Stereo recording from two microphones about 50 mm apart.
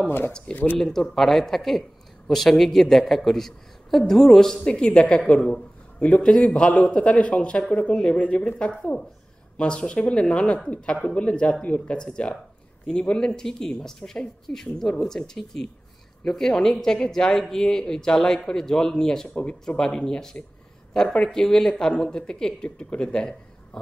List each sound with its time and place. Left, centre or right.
0.7 s speech: centre
4.6 s a man's voice: centre
19.2 s a man's voice: left